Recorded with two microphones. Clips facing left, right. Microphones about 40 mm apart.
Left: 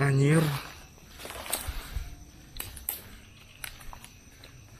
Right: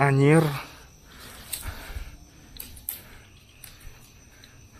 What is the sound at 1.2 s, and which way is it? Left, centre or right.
Walk, left.